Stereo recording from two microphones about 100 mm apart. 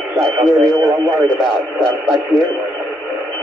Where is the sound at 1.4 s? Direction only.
5° left (ahead or behind).